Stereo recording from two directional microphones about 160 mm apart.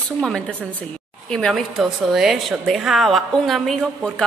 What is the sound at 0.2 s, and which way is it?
Speech, 5° left (ahead or behind).